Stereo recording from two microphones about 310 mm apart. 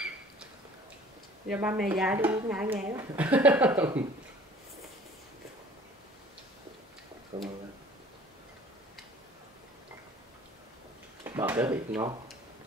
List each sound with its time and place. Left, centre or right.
1.5 s speech: centre
7.3 s speech: centre
11.2 s speech: centre